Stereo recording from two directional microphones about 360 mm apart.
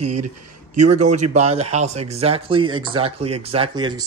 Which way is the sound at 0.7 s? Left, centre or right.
Centre.